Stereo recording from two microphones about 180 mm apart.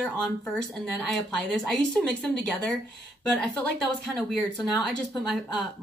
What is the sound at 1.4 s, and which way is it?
A woman's voice, 5° left (ahead or behind).